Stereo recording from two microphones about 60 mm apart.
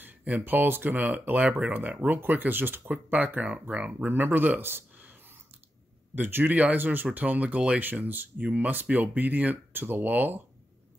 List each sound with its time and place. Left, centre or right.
0.0 s a sound: right
0.5 s speech: right
6.1 s speech: right
7.9 s speech: right